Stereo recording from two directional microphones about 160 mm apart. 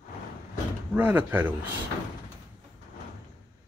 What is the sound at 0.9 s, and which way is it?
Speech, 10° right (ahead or behind).